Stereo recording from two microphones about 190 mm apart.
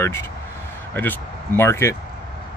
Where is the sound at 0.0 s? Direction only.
15° left (ahead or behind).